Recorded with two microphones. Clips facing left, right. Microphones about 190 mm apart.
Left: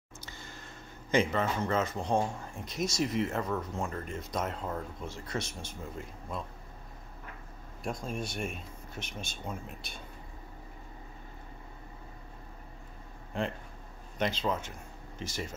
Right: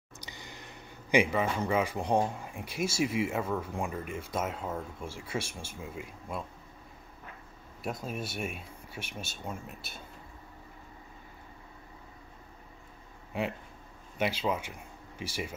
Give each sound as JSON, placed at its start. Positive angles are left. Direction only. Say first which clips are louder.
{"t": 0.2, "sound": "a sound", "louder": "right 1 dB", "side_deg": -15}
{"t": 2.4, "sound": "speech", "louder": "right 1 dB", "side_deg": -10}
{"t": 7.8, "sound": "speech", "louder": "even", "side_deg": -5}
{"t": 14.1, "sound": "speech", "louder": "right 1 dB", "side_deg": -10}